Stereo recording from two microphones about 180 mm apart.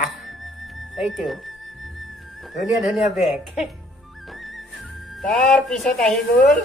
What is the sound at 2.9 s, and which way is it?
Speech, centre (ahead or behind).